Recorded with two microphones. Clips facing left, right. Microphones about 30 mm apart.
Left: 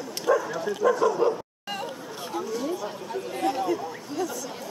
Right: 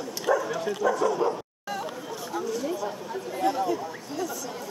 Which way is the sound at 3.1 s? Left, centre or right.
Left.